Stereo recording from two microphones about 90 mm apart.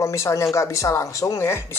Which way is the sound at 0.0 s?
30° left (ahead or behind).